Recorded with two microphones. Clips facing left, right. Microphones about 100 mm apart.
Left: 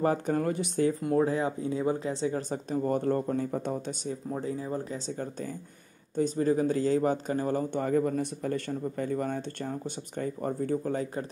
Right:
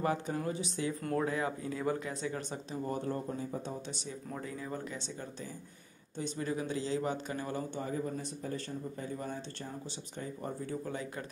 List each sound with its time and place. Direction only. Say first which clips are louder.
0.3 s speech: left 7 dB; 55° left (ahead or behind)
1.0 s speech: left 7 dB; 25° left (ahead or behind)
2.7 s speech: left 9 dB; 50° left (ahead or behind)
4.3 s speech: left 7 dB; 30° left (ahead or behind)
7.7 s speech: left 10 dB; 60° left (ahead or behind); by 11.2 s 45° left (ahead or behind)